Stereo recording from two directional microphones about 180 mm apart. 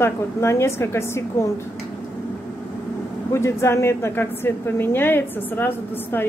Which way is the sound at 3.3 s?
15° left (ahead or behind).